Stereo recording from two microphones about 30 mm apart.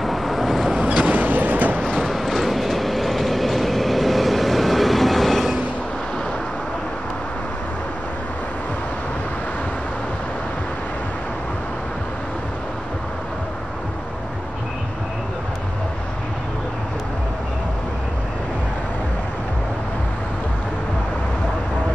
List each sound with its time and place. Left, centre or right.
0.0 s vehicle: centre
0.8 s vehicle: right
1.8 s train: left
2.2 s train: centre